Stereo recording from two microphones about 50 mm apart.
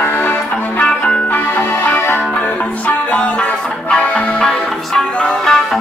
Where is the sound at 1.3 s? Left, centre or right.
Left.